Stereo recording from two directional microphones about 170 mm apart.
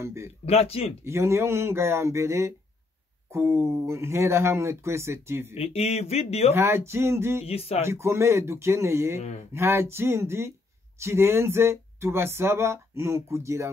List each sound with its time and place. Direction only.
0.0 s speech: 15° right (ahead or behind)
0.5 s speech: 35° left (ahead or behind)
1.0 s speech: 15° right (ahead or behind)
5.5 s speech: 35° left (ahead or behind)
6.5 s speech: 15° right (ahead or behind)
7.4 s speech: 35° left (ahead or behind)
7.8 s speech: 15° right (ahead or behind)